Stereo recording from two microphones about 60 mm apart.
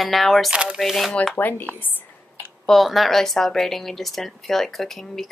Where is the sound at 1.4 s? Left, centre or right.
Left.